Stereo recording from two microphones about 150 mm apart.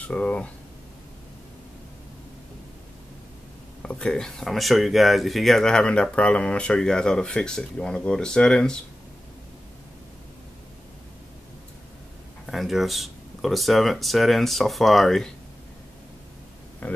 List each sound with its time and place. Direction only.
0.1 s speech: 10° left (ahead or behind)
3.8 s speech: 10° left (ahead or behind)
12.4 s speech: centre (ahead or behind)
16.8 s speech: 10° left (ahead or behind)